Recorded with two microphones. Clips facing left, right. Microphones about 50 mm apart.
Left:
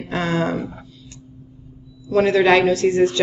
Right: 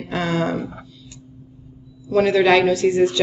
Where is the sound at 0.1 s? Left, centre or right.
Left.